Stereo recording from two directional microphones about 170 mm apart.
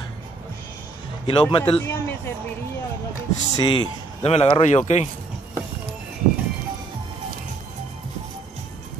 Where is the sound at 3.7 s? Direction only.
35° left (ahead or behind).